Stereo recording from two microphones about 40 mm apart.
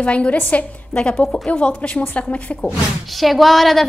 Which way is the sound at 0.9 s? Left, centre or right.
Left.